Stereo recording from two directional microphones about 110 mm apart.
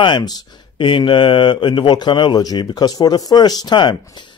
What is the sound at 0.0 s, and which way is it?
Speech, 45° left (ahead or behind).